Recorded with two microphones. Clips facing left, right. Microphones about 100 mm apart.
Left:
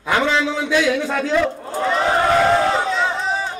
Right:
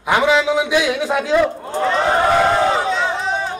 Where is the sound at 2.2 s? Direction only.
Centre (ahead or behind).